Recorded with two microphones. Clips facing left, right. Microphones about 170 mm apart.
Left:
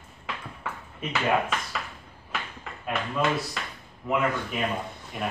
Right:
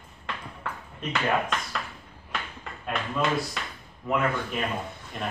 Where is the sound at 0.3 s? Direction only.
5° left (ahead or behind).